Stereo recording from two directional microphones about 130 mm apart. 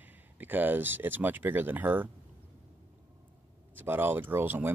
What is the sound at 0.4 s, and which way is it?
Speech, 15° right (ahead or behind).